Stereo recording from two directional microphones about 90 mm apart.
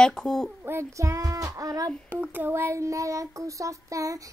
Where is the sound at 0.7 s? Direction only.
30° right (ahead or behind).